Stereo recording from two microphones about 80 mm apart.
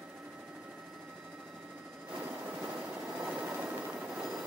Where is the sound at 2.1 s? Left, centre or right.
Centre.